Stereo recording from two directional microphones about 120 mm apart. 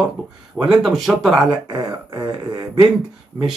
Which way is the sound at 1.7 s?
35° right (ahead or behind).